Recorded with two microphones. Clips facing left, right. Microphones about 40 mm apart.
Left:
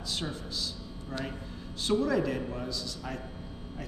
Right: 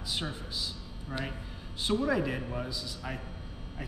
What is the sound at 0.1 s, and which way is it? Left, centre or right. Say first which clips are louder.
A man's voice: even; centre.